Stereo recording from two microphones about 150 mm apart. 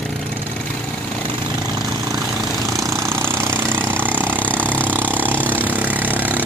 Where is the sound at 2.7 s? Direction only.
20° right (ahead or behind).